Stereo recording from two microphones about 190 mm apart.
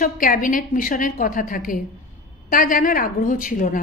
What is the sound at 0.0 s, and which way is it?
A woman's voice, 45° left (ahead or behind).